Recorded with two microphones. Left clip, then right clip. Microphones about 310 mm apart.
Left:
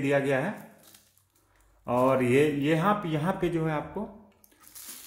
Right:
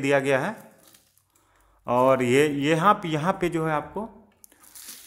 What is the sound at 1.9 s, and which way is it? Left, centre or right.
Speech, right.